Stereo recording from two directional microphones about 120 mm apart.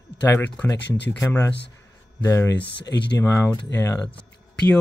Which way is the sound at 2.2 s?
25° left (ahead or behind).